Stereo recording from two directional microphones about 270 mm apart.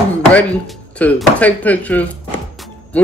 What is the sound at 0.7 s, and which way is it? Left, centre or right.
Speech, centre.